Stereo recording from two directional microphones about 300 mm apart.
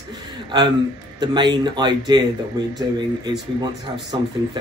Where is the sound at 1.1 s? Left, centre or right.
Centre.